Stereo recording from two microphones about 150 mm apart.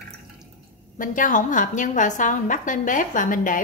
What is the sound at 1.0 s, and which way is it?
A woman's voice, 60° left (ahead or behind).